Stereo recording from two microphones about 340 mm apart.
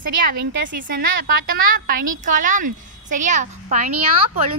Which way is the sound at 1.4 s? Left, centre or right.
Right.